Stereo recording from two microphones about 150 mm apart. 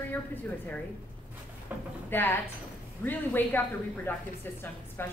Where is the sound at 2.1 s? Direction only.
15° left (ahead or behind).